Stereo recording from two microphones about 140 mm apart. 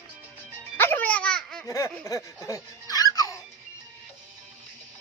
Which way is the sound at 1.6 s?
25° left (ahead or behind).